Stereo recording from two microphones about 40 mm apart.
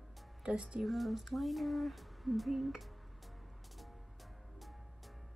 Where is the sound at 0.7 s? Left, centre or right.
Centre.